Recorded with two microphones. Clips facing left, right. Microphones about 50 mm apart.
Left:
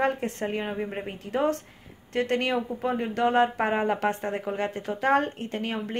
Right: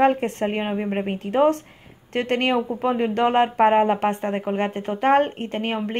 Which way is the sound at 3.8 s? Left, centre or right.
Right.